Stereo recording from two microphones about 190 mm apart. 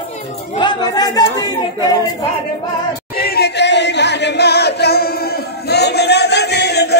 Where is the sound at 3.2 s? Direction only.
60° left (ahead or behind).